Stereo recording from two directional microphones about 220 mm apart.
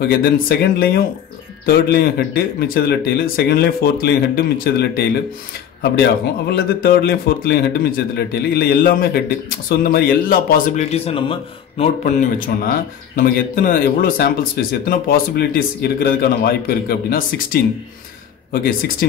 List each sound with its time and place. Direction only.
0.1 s speech: 40° left (ahead or behind)
6.5 s speech: 45° left (ahead or behind)
10.9 s speech: 25° left (ahead or behind)
11.8 s speech: 35° left (ahead or behind)